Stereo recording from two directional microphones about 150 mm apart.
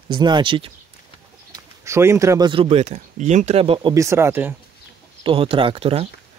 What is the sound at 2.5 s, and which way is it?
Speech, 40° right (ahead or behind).